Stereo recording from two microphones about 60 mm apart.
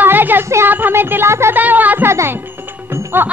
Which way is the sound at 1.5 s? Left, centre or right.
Right.